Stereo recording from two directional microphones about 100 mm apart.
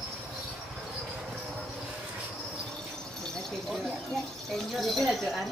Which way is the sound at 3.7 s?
Centre (ahead or behind).